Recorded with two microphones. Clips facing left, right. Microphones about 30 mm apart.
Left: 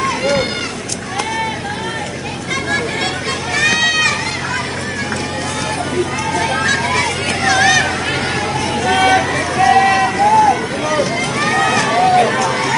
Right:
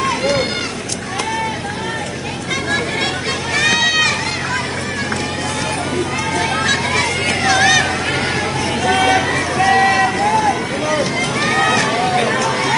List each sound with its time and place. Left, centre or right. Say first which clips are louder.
0.0 s a sound: left 1 dB; centre
3.5 s run: even; centre
6.3 s hubbub: left 1 dB; centre
8.8 s vehicle: left 2 dB; centre
9.3 s run: left 2 dB; centre